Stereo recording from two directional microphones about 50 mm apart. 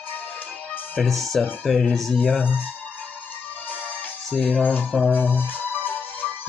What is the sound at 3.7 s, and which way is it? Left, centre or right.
Music, left.